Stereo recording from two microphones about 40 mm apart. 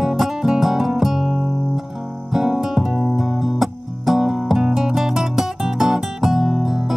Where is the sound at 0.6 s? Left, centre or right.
Centre.